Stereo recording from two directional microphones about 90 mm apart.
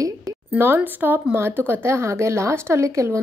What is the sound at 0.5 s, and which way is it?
Speech, 20° right (ahead or behind).